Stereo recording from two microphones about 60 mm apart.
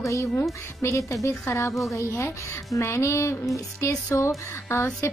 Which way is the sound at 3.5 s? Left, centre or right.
Left.